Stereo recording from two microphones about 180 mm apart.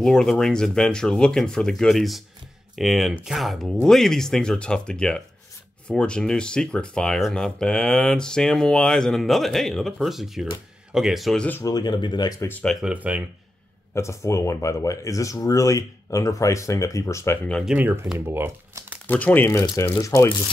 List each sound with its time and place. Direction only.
0.0 s speech: 5° left (ahead or behind)
11.7 s speech: 25° left (ahead or behind)
12.8 s speech: 5° right (ahead or behind)
13.9 s speech: 15° left (ahead or behind)
17.6 s speech: 5° right (ahead or behind)
19.0 s speech: 10° left (ahead or behind)